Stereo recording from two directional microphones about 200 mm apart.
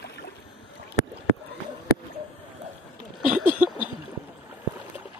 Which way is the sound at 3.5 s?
10° right (ahead or behind).